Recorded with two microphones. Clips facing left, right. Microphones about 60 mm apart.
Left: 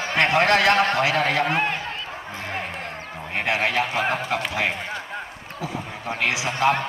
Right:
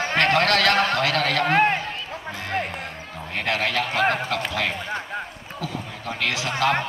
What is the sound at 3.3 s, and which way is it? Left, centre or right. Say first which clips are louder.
Speech: left 1 dB; centre.